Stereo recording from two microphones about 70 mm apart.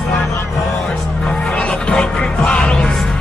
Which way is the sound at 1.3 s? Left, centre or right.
Centre.